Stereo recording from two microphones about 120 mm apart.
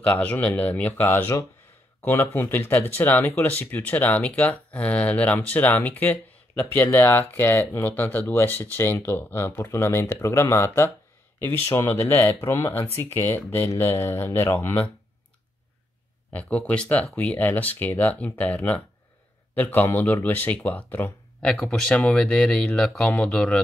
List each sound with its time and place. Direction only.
0.0 s speech: 10° left (ahead or behind)
16.3 s speech: 10° left (ahead or behind)
21.4 s speech: 5° left (ahead or behind)